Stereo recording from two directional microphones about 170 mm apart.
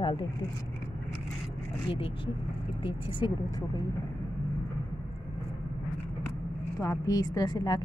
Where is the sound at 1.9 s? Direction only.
30° left (ahead or behind).